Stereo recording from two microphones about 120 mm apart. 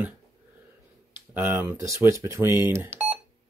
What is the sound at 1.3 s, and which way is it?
Speech, 20° right (ahead or behind).